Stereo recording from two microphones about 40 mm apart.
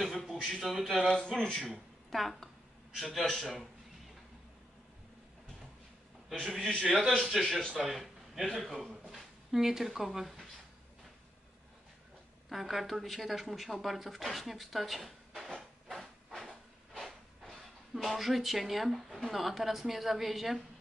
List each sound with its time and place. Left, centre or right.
0.0 s a man's voice: centre
1.1 s speech: centre
1.7 s speech: centre
6.4 s a man's voice: centre
9.1 s speech: centre
12.4 s speech: centre
16.3 s a sound: centre
17.9 s speech: centre